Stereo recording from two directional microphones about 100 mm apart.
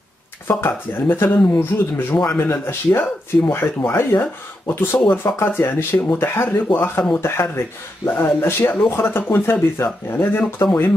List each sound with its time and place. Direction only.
0.5 s speech: 20° left (ahead or behind)